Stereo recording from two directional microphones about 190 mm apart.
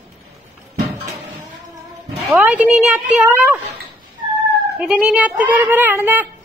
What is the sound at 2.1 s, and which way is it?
A child's voice, 5° right (ahead or behind).